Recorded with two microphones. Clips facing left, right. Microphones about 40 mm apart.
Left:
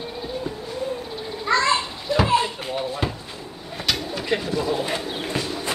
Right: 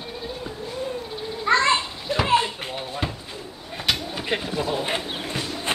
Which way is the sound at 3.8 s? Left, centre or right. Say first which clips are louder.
Even; centre.